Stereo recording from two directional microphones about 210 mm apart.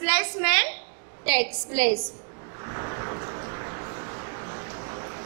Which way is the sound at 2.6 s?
25° right (ahead or behind).